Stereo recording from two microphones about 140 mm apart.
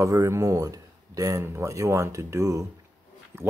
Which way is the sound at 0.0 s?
20° right (ahead or behind).